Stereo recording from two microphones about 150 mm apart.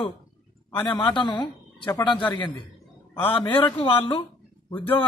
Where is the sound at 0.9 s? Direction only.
30° left (ahead or behind).